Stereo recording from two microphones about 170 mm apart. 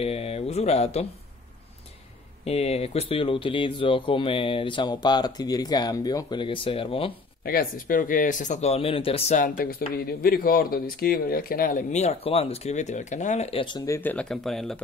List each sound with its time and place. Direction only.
0.0 s speech: 35° left (ahead or behind)
2.4 s speech: 35° left (ahead or behind)
7.4 s speech: 60° left (ahead or behind); by 9.4 s 35° left (ahead or behind)
9.4 s speech: 55° left (ahead or behind); by 14.1 s 15° left (ahead or behind)
14.1 s speech: centre (ahead or behind)